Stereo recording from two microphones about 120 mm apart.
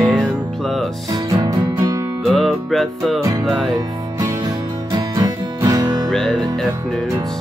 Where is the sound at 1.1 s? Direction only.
35° right (ahead or behind).